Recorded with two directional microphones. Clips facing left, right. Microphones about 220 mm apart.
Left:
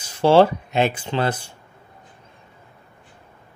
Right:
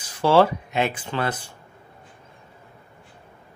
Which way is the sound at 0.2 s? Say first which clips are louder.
Left 3 dB; 25° left (ahead or behind).